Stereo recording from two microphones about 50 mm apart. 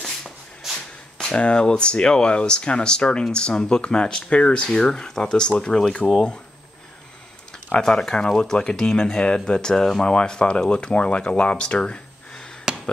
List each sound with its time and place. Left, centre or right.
0.6 s shuffle: centre
1.1 s speech: centre
7.8 s speech: centre